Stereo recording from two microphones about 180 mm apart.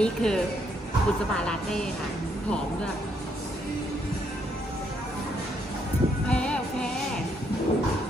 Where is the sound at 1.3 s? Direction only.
5° left (ahead or behind).